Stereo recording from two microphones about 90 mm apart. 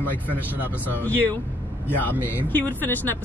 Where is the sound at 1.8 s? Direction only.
20° left (ahead or behind).